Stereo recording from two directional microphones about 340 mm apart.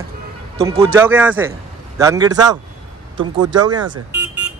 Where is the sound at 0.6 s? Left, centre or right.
Centre.